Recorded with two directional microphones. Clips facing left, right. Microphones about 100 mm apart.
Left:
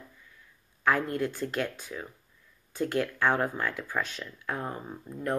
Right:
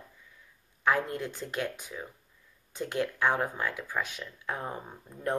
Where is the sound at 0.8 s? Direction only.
15° right (ahead or behind).